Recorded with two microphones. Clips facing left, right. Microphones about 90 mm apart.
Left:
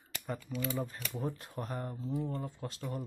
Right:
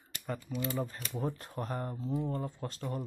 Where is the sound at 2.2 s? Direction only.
10° right (ahead or behind).